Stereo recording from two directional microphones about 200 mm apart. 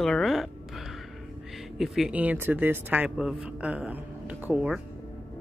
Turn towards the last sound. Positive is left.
turn(degrees=-5)  # may be behind; listen again after turning